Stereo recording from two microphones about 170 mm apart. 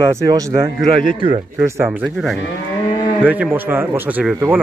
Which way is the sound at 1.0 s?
30° right (ahead or behind).